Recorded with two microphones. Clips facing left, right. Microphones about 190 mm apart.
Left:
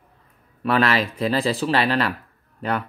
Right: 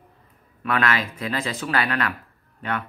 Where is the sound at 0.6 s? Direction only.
35° left (ahead or behind).